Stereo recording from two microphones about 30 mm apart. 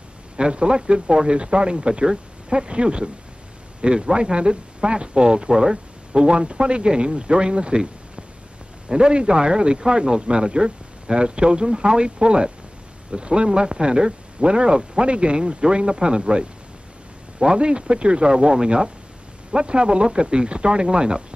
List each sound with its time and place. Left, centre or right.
0.4 s speech: right
5.5 s speech: centre
6.1 s speech: right
8.8 s a man's voice: right
15.0 s speech: right
17.6 s speech: right